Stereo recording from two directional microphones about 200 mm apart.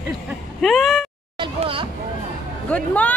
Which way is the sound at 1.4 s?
25° right (ahead or behind).